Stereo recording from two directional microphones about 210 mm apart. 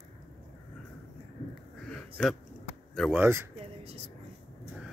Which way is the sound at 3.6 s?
30° right (ahead or behind).